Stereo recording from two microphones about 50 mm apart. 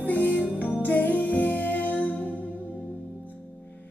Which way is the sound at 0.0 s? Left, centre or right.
Left.